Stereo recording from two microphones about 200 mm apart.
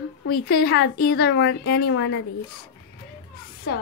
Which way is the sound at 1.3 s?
90° left.